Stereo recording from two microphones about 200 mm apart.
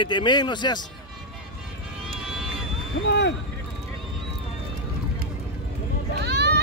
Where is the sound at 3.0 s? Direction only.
55° left (ahead or behind).